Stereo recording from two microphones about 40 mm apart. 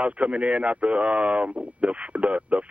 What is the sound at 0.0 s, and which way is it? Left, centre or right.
Speech, right.